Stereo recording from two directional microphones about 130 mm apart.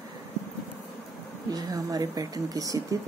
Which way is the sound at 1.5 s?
30° right (ahead or behind).